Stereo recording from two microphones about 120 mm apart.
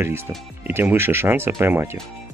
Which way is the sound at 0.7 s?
15° right (ahead or behind).